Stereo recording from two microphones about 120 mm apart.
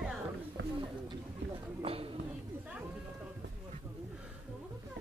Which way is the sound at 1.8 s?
55° right (ahead or behind).